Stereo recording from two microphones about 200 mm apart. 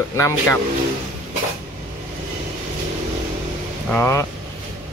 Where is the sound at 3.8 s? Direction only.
10° left (ahead or behind).